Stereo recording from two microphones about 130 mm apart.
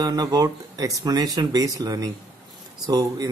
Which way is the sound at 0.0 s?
30° right (ahead or behind).